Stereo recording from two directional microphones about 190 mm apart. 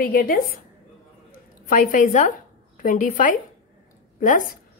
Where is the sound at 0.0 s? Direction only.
50° left (ahead or behind).